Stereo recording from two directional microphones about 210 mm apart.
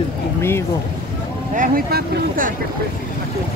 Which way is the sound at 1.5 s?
40° right (ahead or behind).